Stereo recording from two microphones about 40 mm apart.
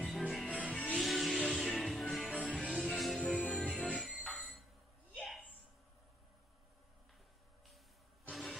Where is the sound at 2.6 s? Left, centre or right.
Centre.